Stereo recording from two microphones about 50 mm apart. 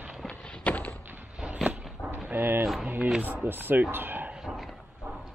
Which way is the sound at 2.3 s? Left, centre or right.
Right.